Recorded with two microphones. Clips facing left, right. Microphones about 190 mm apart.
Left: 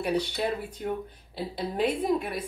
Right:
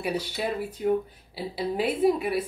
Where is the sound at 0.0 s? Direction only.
5° right (ahead or behind).